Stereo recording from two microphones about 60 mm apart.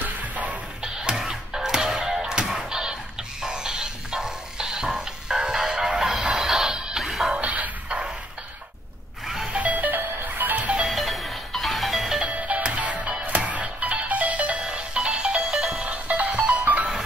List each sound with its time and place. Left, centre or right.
0.0 s music: right
1.0 s music: centre
7.3 s music: right
9.2 s vehicle: centre
9.5 s music: right
10.9 s music: centre
12.3 s music: right